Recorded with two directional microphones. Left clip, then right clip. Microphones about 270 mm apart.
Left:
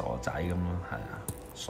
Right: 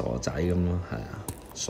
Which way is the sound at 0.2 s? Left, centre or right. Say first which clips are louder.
Right 4 dB; centre.